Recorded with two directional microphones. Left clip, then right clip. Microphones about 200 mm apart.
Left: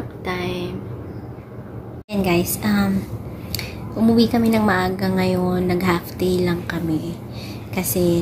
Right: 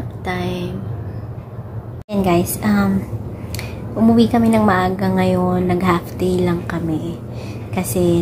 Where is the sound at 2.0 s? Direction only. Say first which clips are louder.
Right 3 dB; 15° right (ahead or behind).